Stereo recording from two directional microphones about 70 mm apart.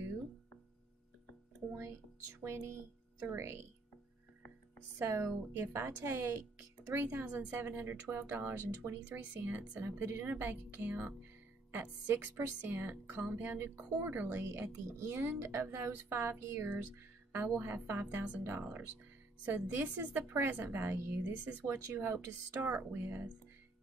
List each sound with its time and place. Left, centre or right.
2.4 s speech: right
4.9 s a woman's voice: right
9.0 s a woman's voice: right
17.3 s a woman's voice: right
18.4 s a woman's voice: right